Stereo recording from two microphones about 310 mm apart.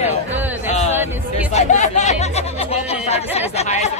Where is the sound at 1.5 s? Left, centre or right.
Left.